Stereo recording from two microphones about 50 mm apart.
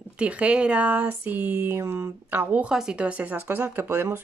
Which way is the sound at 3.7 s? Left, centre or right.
Right.